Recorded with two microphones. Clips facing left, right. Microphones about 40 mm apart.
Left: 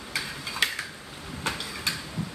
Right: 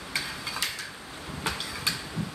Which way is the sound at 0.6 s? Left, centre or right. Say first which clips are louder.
Left 8 dB; left.